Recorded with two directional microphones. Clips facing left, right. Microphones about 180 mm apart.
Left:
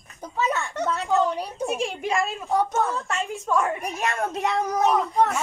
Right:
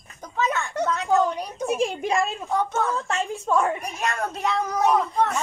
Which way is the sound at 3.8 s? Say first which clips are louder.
Left 1 dB; 20° left (ahead or behind).